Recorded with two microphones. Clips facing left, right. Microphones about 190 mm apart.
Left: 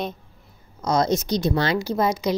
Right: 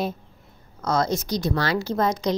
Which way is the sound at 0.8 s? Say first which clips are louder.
Left 2 dB; 20° left (ahead or behind).